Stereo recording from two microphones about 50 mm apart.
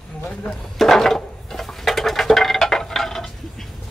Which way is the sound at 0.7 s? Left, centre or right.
Centre.